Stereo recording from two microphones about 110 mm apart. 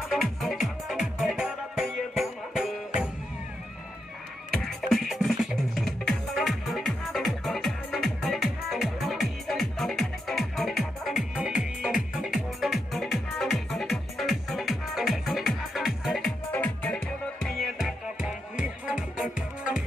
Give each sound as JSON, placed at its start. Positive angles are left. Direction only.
{"t": 0.1, "sound": "music", "side_deg": 0}
{"t": 4.6, "sound": "music", "side_deg": 0}
{"t": 16.5, "sound": "music", "side_deg": 15}